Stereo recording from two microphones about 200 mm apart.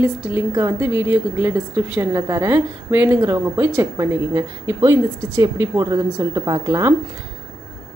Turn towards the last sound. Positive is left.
turn(degrees=-15)  # may be behind; listen again after turning